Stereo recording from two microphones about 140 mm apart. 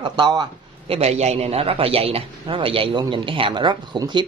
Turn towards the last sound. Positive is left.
turn(degrees=-30)  # may be behind; listen again after turning